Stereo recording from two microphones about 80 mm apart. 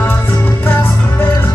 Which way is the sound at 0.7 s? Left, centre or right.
Left.